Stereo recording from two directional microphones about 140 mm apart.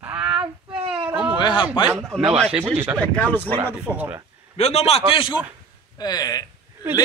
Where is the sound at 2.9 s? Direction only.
10° left (ahead or behind).